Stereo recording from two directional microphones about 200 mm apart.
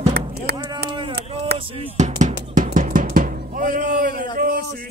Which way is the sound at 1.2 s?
30° right (ahead or behind).